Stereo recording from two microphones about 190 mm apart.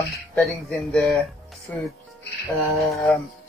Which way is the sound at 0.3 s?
5° left (ahead or behind).